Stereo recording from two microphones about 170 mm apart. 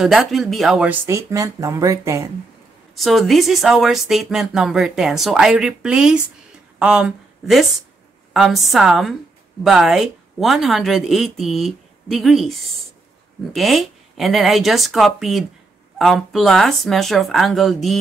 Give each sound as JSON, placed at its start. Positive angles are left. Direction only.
{"t": 0.0, "sound": "speech", "side_deg": 0}
{"t": 1.0, "sound": "speech", "side_deg": -20}
{"t": 3.0, "sound": "a woman's voice", "side_deg": 0}